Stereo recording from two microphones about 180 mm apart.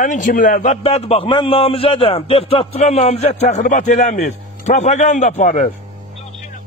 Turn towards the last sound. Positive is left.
turn(degrees=45)  # may be behind; listen again after turning